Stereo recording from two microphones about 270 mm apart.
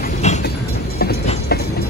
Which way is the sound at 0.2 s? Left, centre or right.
Left.